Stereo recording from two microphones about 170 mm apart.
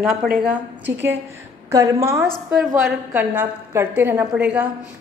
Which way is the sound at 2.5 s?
5° right (ahead or behind).